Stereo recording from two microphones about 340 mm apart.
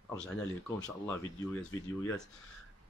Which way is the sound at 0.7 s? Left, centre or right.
Centre.